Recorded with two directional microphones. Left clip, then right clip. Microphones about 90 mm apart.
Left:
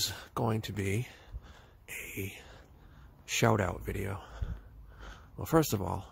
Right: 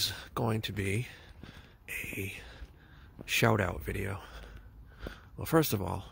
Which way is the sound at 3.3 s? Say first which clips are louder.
Right 1 dB; 15° left (ahead or behind).